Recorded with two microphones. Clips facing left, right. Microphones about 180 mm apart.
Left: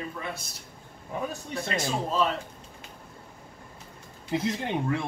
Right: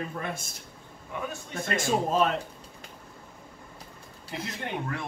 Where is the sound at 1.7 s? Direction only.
50° right (ahead or behind).